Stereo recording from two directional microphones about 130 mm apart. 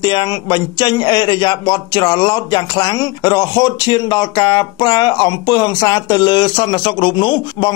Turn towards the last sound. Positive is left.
turn(degrees=40)  # may be behind; listen again after turning